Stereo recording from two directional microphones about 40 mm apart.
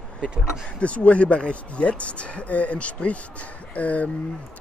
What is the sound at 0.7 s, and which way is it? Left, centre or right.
Speech, left.